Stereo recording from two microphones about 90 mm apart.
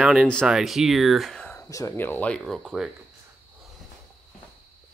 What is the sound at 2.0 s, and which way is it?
Speech, 20° left (ahead or behind).